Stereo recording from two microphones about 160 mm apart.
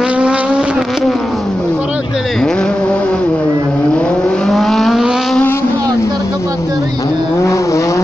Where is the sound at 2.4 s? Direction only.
5° left (ahead or behind).